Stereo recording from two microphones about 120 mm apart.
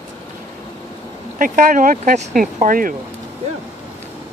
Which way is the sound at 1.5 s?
90° right.